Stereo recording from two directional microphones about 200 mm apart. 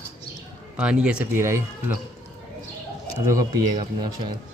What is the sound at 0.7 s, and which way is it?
Speech, 5° right (ahead or behind).